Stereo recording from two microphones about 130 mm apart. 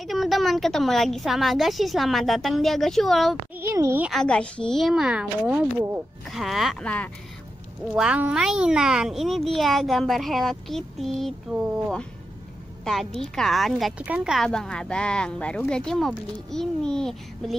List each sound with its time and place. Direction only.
0.0 s a child's voice: centre (ahead or behind)
3.5 s speech: 20° right (ahead or behind)
4.1 s a child's voice: 5° left (ahead or behind)
7.9 s a child's voice: 10° right (ahead or behind)
14.4 s a child's voice: 5° left (ahead or behind)